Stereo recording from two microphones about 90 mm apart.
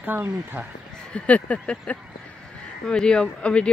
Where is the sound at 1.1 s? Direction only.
15° left (ahead or behind).